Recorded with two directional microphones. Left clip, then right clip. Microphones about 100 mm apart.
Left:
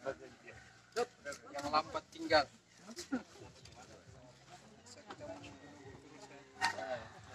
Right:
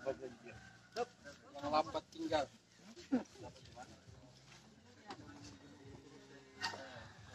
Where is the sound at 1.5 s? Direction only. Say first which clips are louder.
Left 1 dB; 30° right (ahead or behind).